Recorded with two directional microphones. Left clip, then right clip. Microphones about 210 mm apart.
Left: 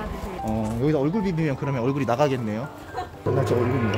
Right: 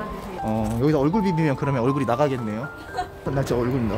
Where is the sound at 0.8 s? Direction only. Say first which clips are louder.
Right 3 dB; 25° right (ahead or behind).